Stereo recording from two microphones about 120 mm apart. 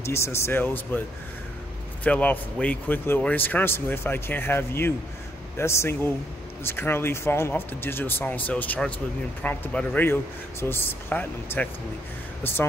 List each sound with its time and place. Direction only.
0.0 s speech: 25° left (ahead or behind)
2.0 s a man's voice: 15° left (ahead or behind)